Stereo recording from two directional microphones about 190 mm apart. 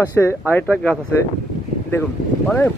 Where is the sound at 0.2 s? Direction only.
10° left (ahead or behind).